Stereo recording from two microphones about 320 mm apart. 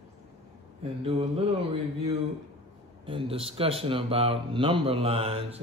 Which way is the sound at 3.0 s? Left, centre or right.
Centre.